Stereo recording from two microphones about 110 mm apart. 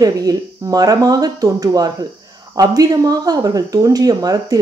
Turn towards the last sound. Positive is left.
turn(degrees=-35)  # may be behind; listen again after turning